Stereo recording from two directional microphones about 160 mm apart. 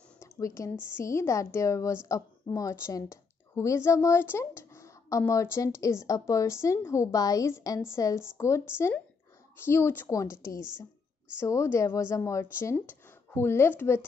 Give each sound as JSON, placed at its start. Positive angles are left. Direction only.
{"t": 0.2, "sound": "speech", "side_deg": 20}